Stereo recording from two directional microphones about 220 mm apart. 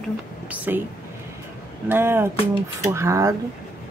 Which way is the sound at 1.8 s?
10° right (ahead or behind).